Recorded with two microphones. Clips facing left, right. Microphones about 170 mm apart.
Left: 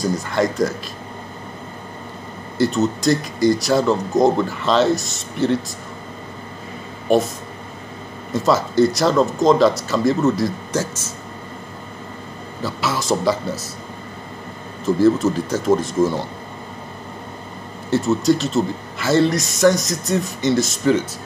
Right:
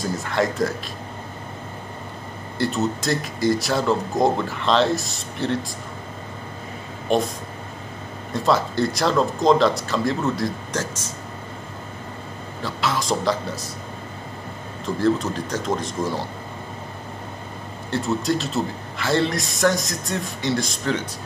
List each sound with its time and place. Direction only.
0.3 s a man's voice: centre (ahead or behind)
2.5 s a man's voice: centre (ahead or behind)
7.1 s a man's voice: 5° left (ahead or behind)
8.3 s a man's voice: centre (ahead or behind)
12.6 s a man's voice: 5° left (ahead or behind)
15.0 s a man's voice: 5° left (ahead or behind)
17.8 s a man's voice: 5° left (ahead or behind)